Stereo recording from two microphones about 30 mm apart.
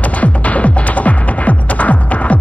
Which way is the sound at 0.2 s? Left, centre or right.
Left.